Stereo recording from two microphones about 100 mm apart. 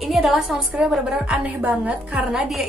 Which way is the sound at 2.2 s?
5° right (ahead or behind).